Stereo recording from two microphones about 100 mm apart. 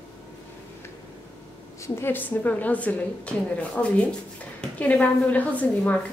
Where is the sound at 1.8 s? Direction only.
25° left (ahead or behind).